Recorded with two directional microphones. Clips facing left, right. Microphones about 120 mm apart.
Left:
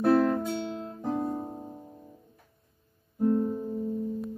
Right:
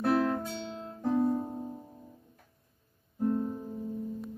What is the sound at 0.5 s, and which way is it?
Guitar, 10° left (ahead or behind).